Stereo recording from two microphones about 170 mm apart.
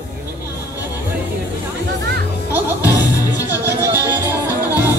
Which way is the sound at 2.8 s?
20° left (ahead or behind).